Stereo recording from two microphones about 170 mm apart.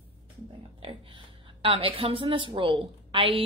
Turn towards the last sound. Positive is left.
turn(degrees=-30)  # may be behind; listen again after turning